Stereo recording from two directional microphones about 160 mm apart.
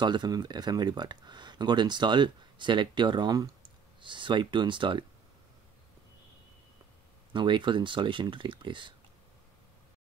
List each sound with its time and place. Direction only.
0.0 s speech: 30° right (ahead or behind)
7.3 s speech: 30° right (ahead or behind)